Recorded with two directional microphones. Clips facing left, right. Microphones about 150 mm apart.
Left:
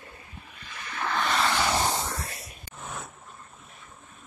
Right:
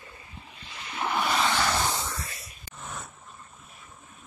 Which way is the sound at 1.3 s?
Centre (ahead or behind).